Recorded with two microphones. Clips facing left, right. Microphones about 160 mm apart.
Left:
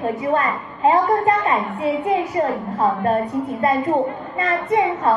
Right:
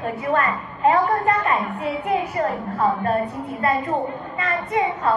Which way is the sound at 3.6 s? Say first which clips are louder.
Left 3 dB; 25° left (ahead or behind).